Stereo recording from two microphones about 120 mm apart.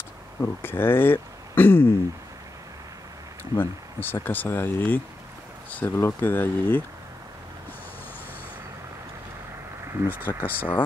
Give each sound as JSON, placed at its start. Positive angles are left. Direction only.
{"t": 0.4, "sound": "speech", "side_deg": 15}
{"t": 3.5, "sound": "speech", "side_deg": 15}
{"t": 10.2, "sound": "speech", "side_deg": 15}